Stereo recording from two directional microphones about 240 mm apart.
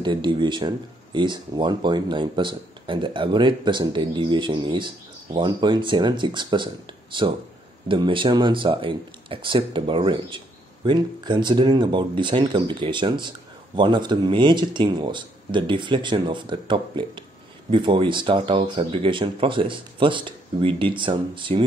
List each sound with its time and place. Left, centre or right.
0.0 s speech: centre